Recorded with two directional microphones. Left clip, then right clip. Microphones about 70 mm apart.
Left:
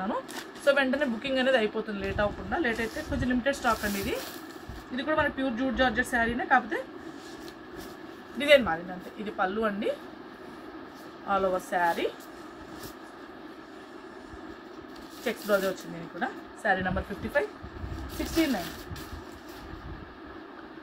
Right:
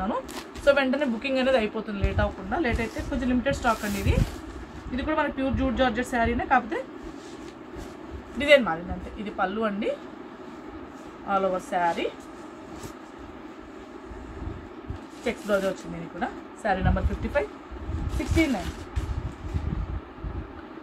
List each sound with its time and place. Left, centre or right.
0.7 s a woman's voice: centre
4.9 s a woman's voice: centre
8.4 s a woman's voice: centre
11.2 s a woman's voice: centre
15.2 s speech: centre
16.2 s a woman's voice: centre